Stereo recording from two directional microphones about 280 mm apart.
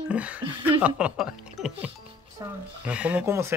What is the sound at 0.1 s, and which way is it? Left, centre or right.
Speech, centre.